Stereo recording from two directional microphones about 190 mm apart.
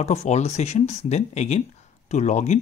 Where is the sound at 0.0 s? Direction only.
35° left (ahead or behind).